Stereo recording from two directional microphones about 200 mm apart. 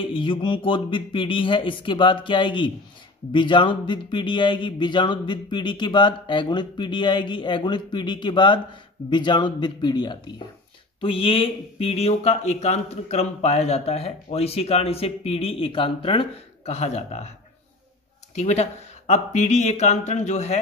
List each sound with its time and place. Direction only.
0.0 s speech: 25° left (ahead or behind)
18.3 s speech: 35° left (ahead or behind)